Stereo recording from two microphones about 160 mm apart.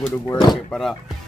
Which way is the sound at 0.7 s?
Centre (ahead or behind).